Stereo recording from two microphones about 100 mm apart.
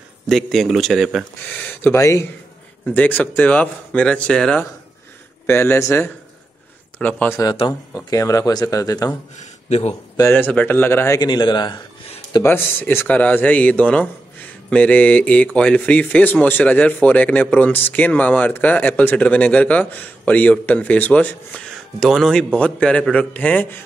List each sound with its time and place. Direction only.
0.3 s speech: centre (ahead or behind)
1.6 s speech: 20° left (ahead or behind)
2.0 s speech: 30° left (ahead or behind)
2.9 s speech: 15° left (ahead or behind)
5.5 s speech: 25° left (ahead or behind)
7.0 s speech: 15° left (ahead or behind)
7.9 s speech: 35° left (ahead or behind)
9.7 s speech: 90° left
10.2 s speech: 20° left (ahead or behind)
11.1 s speech: 45° left (ahead or behind)
12.4 s speech: 20° left (ahead or behind)
22.0 s speech: 5° left (ahead or behind)